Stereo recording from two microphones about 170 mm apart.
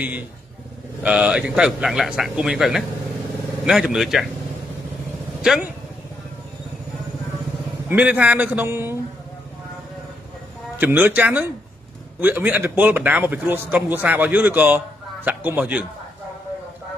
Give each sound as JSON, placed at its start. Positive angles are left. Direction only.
{"t": 1.0, "sound": "speech", "side_deg": -5}
{"t": 5.4, "sound": "speech", "side_deg": -5}
{"t": 7.9, "sound": "a man's voice", "side_deg": -10}
{"t": 10.8, "sound": "a man's voice", "side_deg": -10}